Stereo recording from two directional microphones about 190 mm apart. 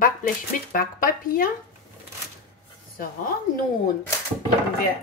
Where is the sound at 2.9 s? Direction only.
50° left (ahead or behind).